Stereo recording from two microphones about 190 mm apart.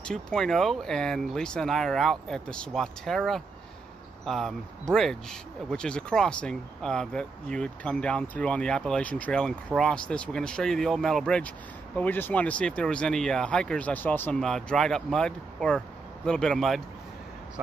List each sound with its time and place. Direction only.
0.1 s speech: 5° left (ahead or behind)